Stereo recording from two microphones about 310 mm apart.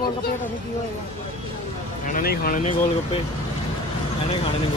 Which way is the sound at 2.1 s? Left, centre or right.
Left.